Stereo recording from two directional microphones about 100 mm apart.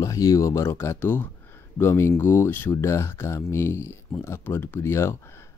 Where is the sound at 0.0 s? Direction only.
35° left (ahead or behind).